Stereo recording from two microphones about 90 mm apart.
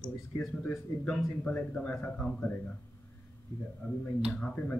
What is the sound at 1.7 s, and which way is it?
Speech, 15° left (ahead or behind).